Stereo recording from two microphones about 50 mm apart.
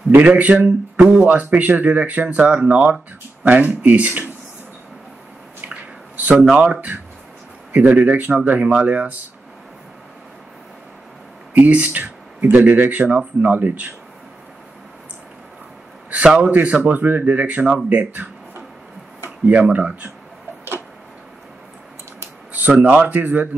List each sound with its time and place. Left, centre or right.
0.1 s speech: right
0.7 s speech: centre
6.5 s speech: right
11.5 s speech: right
16.1 s a man's voice: right
19.5 s speech: right
22.5 s speech: right